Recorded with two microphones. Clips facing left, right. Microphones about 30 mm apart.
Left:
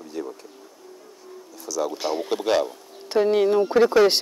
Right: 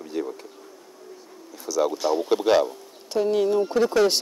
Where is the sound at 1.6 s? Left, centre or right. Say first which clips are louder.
Right 3 dB; centre.